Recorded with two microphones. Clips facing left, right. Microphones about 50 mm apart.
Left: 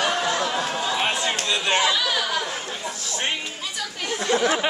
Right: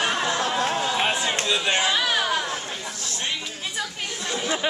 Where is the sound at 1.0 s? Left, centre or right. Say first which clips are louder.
Even; centre.